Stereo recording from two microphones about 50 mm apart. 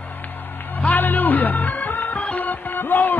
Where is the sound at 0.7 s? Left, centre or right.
Left.